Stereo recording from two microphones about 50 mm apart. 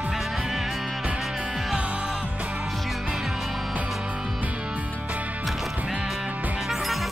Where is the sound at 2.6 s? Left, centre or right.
Centre.